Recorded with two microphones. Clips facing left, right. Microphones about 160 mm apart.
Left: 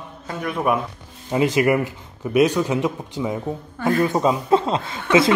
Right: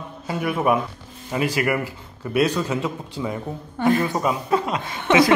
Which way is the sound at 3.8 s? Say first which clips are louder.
Right 1 dB; 20° right (ahead or behind).